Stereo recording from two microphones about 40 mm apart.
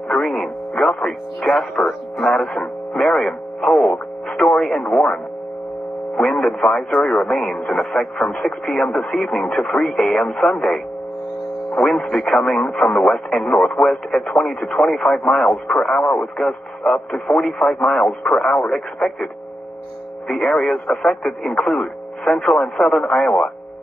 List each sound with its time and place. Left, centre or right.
0.1 s speech: centre
1.9 s speech: centre
2.3 s radio: left
6.1 s speech: centre
11.7 s speech: centre
21.3 s speech: centre